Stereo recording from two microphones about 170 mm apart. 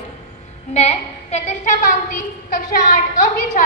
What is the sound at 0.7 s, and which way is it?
A woman's voice, 40° left (ahead or behind).